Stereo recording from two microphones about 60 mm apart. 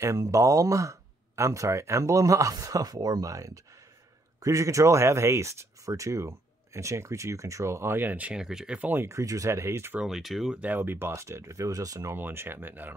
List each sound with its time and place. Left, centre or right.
0.0 s speech: right
8.0 s speech: right
8.3 s speech: centre
9.0 s speech: right
10.0 s speech: centre
10.5 s speech: right
12.2 s speech: right